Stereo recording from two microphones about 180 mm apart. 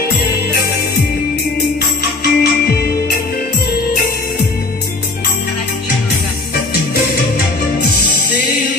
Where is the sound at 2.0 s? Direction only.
60° left (ahead or behind).